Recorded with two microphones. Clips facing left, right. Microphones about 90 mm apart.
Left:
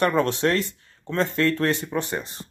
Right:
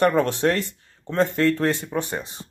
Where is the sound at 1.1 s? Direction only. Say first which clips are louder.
Right 2 dB; 20° right (ahead or behind).